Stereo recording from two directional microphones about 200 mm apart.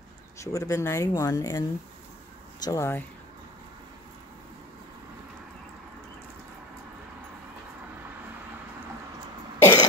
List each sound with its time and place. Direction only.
0.4 s speech: 15° left (ahead or behind)
2.6 s speech: 15° left (ahead or behind)
9.6 s cough: 15° left (ahead or behind)